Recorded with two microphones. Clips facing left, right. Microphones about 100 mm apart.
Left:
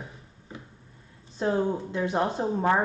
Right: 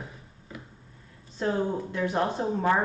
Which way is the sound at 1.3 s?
20° left (ahead or behind).